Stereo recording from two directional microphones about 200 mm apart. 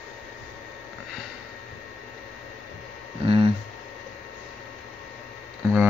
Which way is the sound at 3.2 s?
25° right (ahead or behind).